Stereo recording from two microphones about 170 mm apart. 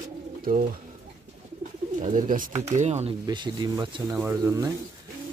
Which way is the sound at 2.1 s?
50° right (ahead or behind).